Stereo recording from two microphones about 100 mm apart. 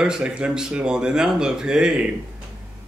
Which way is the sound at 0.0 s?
10° right (ahead or behind).